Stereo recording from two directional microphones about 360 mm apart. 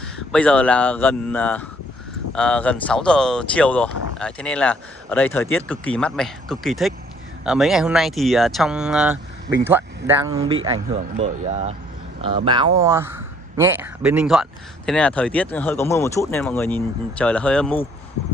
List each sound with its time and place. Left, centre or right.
0.0 s speech: centre